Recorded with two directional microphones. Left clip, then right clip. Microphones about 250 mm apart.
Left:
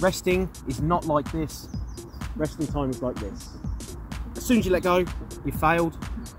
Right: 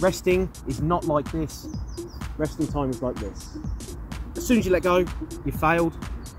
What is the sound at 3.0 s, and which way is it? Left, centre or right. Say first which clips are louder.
Speech: right 1 dB; centre.